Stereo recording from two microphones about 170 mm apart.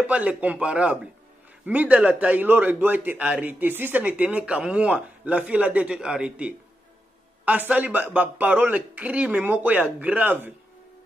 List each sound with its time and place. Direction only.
0.0 s a man's voice: 10° right (ahead or behind)